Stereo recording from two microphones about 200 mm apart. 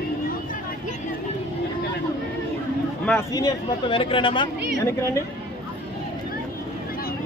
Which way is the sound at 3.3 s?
20° left (ahead or behind).